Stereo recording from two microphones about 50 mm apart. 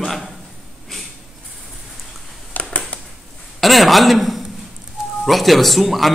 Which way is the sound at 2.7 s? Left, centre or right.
Left.